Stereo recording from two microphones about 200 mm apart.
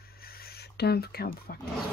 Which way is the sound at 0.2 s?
50° left (ahead or behind).